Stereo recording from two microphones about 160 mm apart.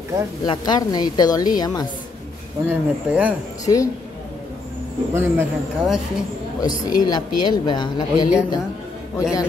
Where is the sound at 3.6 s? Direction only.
20° left (ahead or behind).